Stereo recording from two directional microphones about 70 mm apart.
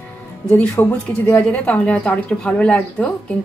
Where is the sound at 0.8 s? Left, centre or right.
Left.